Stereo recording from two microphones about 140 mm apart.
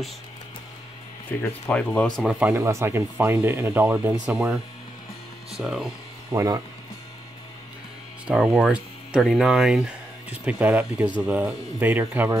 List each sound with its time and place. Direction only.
1.4 s speech: 10° left (ahead or behind)
2.5 s speech: 20° right (ahead or behind)
5.6 s speech: centre (ahead or behind)
6.3 s speech: 25° right (ahead or behind)
8.3 s speech: 5° right (ahead or behind)